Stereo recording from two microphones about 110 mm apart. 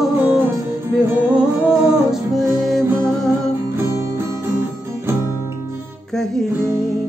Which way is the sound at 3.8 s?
25° right (ahead or behind).